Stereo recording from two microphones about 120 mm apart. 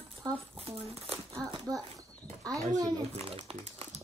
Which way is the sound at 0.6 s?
50° right (ahead or behind).